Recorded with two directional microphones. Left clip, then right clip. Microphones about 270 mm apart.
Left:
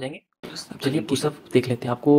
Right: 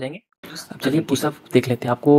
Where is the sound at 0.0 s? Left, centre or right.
Right.